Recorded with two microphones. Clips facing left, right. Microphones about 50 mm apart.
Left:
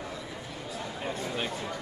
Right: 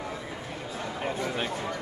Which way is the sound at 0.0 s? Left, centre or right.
Right.